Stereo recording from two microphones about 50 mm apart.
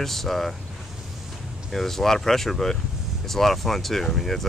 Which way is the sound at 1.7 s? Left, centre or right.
Centre.